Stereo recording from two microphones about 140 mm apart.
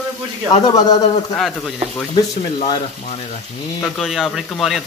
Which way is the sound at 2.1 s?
40° left (ahead or behind).